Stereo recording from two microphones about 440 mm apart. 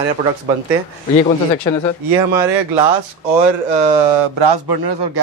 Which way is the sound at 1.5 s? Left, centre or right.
Centre.